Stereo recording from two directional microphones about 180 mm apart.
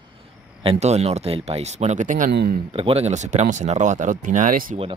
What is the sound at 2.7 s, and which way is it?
Speech, 30° right (ahead or behind).